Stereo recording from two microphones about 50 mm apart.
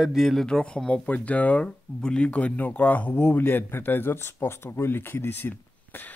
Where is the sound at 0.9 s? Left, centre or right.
Left.